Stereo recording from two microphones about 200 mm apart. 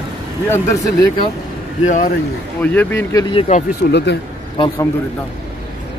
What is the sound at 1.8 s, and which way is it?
Speech, 40° left (ahead or behind).